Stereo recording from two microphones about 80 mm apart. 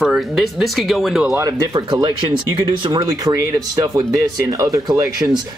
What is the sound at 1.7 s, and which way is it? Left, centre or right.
Speech, right.